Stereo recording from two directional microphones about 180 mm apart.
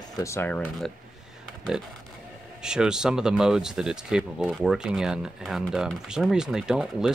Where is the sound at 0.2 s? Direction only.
15° left (ahead or behind).